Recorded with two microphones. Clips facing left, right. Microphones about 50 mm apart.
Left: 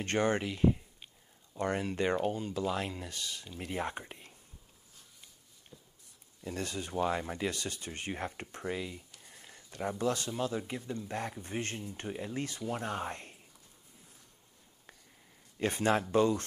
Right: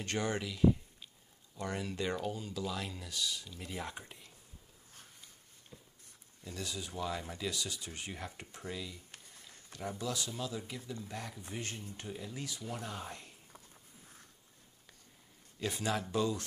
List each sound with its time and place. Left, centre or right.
0.0 s speech: left
6.4 s speech: left
9.2 s a sound: left
9.7 s speech: left
15.6 s speech: left